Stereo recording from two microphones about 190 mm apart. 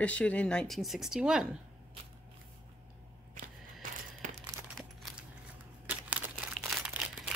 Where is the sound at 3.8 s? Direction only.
45° right (ahead or behind).